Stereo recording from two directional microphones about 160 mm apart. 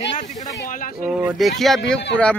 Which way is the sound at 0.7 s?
60° left (ahead or behind).